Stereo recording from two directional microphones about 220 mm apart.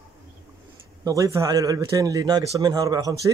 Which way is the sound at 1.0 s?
15° right (ahead or behind).